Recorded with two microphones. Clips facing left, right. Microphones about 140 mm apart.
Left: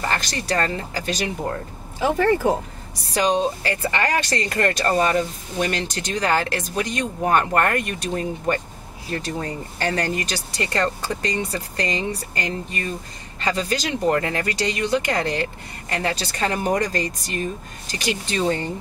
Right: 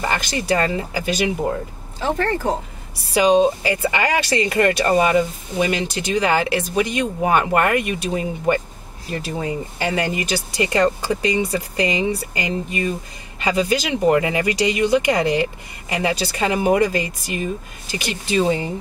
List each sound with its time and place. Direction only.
0.0 s speech: 10° right (ahead or behind)
2.0 s speech: 10° left (ahead or behind)
3.1 s speech: 10° right (ahead or behind)